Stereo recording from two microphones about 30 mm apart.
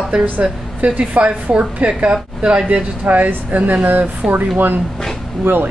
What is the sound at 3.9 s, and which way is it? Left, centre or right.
Speech, right.